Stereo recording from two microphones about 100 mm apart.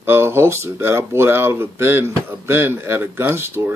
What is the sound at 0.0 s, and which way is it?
Speech, 25° right (ahead or behind).